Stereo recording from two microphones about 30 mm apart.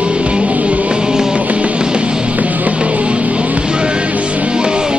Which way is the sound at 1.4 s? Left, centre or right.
Right.